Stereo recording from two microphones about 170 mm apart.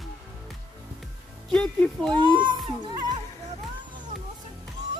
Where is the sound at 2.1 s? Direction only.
30° right (ahead or behind).